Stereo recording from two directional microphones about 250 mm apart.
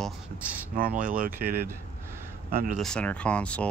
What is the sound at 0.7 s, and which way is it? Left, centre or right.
Speech, right.